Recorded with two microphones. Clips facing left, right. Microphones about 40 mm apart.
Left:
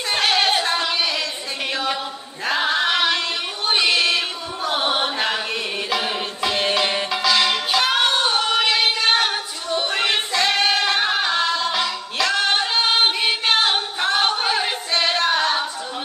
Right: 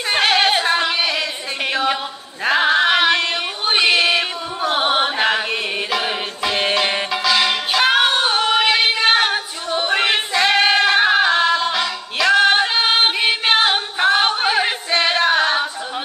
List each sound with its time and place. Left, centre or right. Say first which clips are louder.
0.1 s singing: right 3 dB; centre
1.7 s a sound: right 5 dB; centre
2.4 s singing: right 5 dB; centre
6.4 s music: right 2 dB; centre
7.8 s female singing: right 6 dB; centre
10.9 s music: right 6 dB; centre
11.7 s a capella: right 2 dB; centre